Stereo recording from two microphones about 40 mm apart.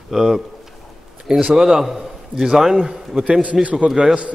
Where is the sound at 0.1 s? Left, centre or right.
Centre.